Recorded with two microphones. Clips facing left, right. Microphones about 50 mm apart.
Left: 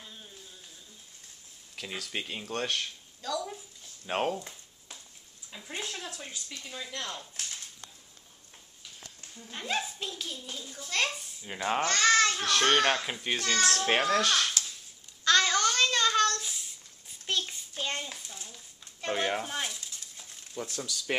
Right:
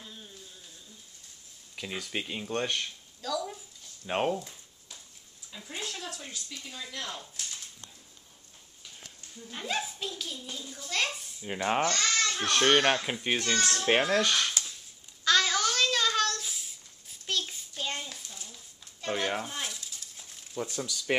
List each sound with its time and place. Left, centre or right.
0.0 s a sound: centre
1.8 s speech: centre
5.5 s speech: centre
6.9 s speech: centre
9.5 s speech: centre
11.4 s a child's voice: centre
11.9 s a sound: left
12.4 s speech: right
13.0 s a child's voice: centre
15.2 s a sound: centre
17.3 s child singing: centre
17.7 s a sound: centre
19.7 s stir: centre
20.6 s speech: centre